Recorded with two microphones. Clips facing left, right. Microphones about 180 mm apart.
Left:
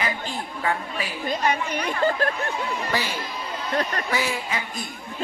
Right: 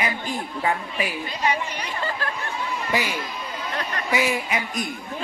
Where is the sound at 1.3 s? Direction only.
50° left (ahead or behind).